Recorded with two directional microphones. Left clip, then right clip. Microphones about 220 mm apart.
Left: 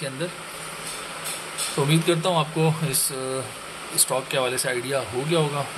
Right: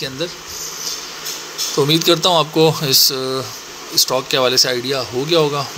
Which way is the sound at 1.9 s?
25° right (ahead or behind).